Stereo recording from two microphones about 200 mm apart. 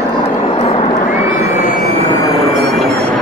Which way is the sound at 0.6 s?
30° left (ahead or behind).